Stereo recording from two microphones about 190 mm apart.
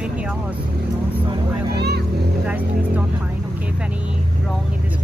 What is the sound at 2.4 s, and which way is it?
Speech, 10° right (ahead or behind).